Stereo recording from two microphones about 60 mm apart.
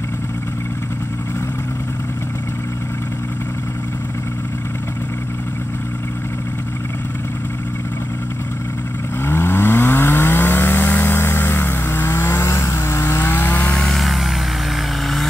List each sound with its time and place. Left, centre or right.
9.2 s chainsaw: left
13.2 s vehicle: left
13.7 s vehicle: centre